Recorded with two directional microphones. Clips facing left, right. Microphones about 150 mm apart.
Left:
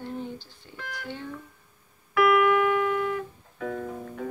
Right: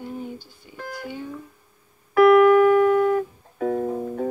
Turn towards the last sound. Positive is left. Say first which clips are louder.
# right 9 dB
turn(degrees=-35)  # may be behind; listen again after turning